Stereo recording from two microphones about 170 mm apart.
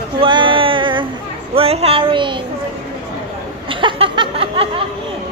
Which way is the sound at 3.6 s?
30° right (ahead or behind).